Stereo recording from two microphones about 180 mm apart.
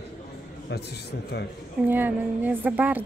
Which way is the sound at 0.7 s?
65° left (ahead or behind).